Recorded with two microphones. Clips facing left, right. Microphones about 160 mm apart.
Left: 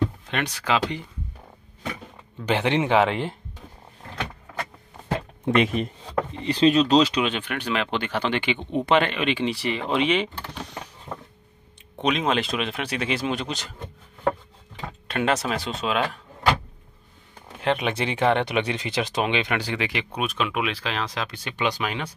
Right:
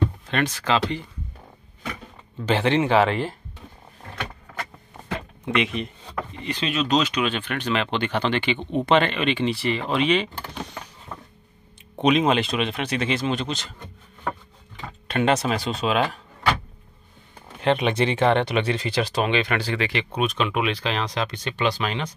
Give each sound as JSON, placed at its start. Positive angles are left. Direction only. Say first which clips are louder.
{"t": 0.0, "sound": "speech", "louder": "right 2 dB", "side_deg": 15}
{"t": 2.4, "sound": "speech", "louder": "right 2 dB", "side_deg": 15}
{"t": 5.4, "sound": "speech", "louder": "left 3 dB", "side_deg": 45}
{"t": 6.3, "sound": "speech", "louder": "left 9 dB", "side_deg": 30}
{"t": 7.2, "sound": "speech", "louder": "right 1 dB", "side_deg": 10}
{"t": 11.1, "sound": "a sound", "louder": "left 3 dB", "side_deg": 20}
{"t": 12.0, "sound": "speech", "louder": "right 4 dB", "side_deg": -5}
{"t": 15.0, "sound": "speech", "louder": "right 3 dB", "side_deg": 0}
{"t": 17.6, "sound": "speech", "louder": "right 3 dB", "side_deg": 5}